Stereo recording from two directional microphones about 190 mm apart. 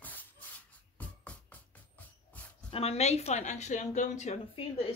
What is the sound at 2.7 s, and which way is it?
Speech, 35° left (ahead or behind).